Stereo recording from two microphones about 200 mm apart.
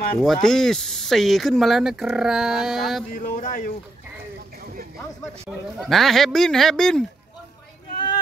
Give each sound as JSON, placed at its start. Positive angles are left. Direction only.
{"t": 0.2, "sound": "speech", "side_deg": 0}
{"t": 3.1, "sound": "speech", "side_deg": 40}
{"t": 5.8, "sound": "speech", "side_deg": 0}